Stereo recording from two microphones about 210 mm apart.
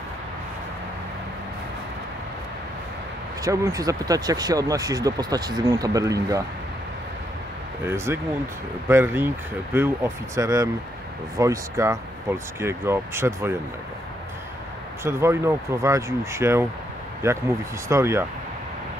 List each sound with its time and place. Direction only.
3.4 s speech: 15° right (ahead or behind)
7.8 s speech: 10° right (ahead or behind)
15.0 s speech: 10° right (ahead or behind)